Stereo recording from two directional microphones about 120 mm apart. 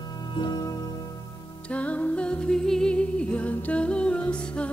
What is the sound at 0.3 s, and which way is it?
Music, 40° left (ahead or behind).